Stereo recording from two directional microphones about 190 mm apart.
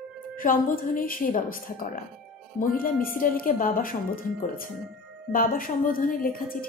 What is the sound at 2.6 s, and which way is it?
A woman's voice, 45° left (ahead or behind).